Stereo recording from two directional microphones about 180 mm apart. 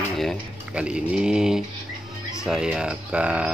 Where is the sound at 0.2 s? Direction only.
Centre (ahead or behind).